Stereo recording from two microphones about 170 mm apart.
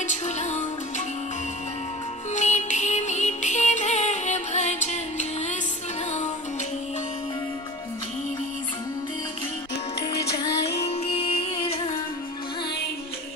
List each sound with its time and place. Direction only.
0.0 s music: 45° left (ahead or behind)
2.3 s music: 45° left (ahead or behind)
10.8 s music: 35° left (ahead or behind)